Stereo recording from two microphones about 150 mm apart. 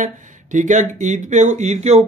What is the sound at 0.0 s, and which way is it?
Speech, 60° right (ahead or behind).